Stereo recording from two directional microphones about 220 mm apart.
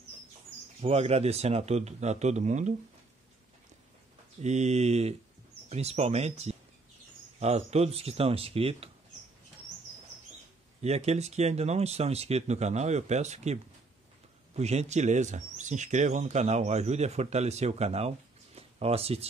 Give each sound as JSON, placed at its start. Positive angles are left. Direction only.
{"t": 0.7, "sound": "speech", "side_deg": -30}
{"t": 4.4, "sound": "speech", "side_deg": -30}
{"t": 10.8, "sound": "speech", "side_deg": -30}